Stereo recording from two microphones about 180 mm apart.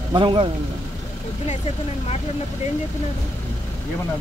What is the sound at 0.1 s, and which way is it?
Speech, 25° right (ahead or behind).